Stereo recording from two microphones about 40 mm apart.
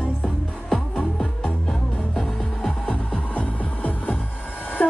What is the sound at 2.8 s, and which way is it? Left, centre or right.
Music, left.